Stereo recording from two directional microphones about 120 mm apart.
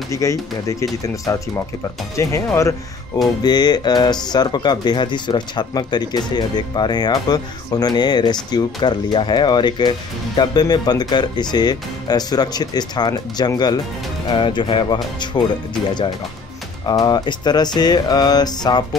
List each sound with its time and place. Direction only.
0.1 s speech: 25° left (ahead or behind)
3.4 s speech: 35° left (ahead or behind)
16.8 s speech: 35° left (ahead or behind)